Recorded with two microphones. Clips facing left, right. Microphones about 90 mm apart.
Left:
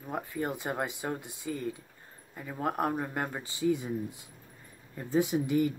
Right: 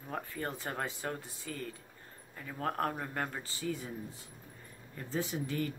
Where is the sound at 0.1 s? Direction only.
15° left (ahead or behind).